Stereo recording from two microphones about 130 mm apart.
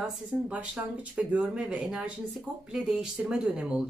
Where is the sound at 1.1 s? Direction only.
10° right (ahead or behind).